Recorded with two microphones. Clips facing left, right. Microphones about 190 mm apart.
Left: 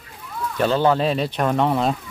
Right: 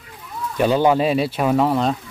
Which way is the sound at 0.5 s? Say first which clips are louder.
Right 2 dB; 10° right (ahead or behind).